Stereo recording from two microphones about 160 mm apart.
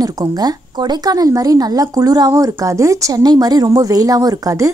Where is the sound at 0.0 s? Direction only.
25° right (ahead or behind).